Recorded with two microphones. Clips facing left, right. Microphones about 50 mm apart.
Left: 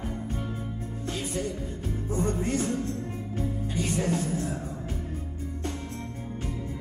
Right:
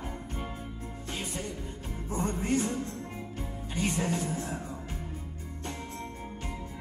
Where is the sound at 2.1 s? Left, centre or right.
Centre.